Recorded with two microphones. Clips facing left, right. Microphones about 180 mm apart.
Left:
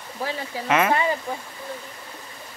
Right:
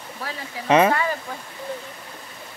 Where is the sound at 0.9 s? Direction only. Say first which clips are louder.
Left 1 dB; 20° left (ahead or behind).